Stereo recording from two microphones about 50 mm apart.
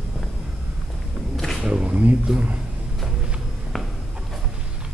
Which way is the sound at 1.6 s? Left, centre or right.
Right.